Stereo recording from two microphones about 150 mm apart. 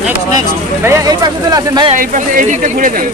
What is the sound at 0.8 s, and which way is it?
Speech, 20° right (ahead or behind).